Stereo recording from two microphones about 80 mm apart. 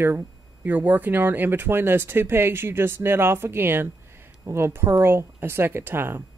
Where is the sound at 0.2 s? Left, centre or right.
Right.